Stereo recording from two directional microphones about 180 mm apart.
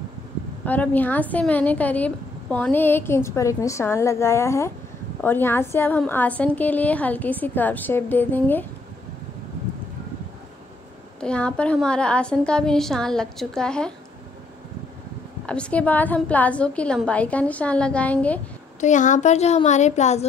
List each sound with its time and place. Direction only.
0.7 s a woman's voice: 10° left (ahead or behind)
11.1 s a woman's voice: 5° left (ahead or behind)
15.4 s a woman's voice: 5° left (ahead or behind)
18.8 s a woman's voice: 45° left (ahead or behind)